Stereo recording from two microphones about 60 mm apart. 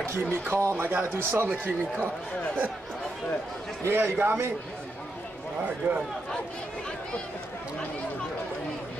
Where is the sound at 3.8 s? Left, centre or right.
Right.